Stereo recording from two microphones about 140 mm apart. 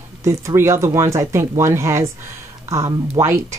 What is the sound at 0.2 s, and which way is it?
Speech, 20° right (ahead or behind).